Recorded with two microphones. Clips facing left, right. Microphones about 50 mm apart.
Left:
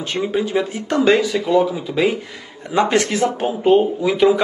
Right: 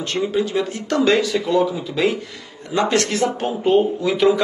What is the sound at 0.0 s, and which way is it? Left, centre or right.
Speech, centre.